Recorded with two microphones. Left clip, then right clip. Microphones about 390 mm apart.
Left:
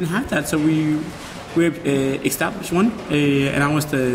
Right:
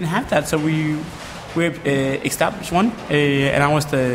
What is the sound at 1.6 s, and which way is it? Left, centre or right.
Speech, right.